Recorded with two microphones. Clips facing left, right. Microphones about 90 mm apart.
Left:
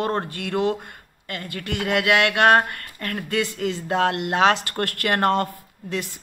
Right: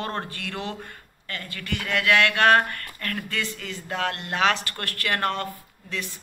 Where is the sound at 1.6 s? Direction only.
25° left (ahead or behind).